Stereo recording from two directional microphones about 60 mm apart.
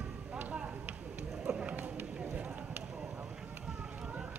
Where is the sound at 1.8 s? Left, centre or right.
Right.